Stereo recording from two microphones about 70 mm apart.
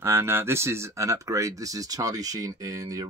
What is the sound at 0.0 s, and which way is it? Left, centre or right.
Speech, right.